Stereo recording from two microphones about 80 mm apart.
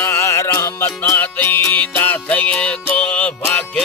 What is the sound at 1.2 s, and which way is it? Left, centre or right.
Music, left.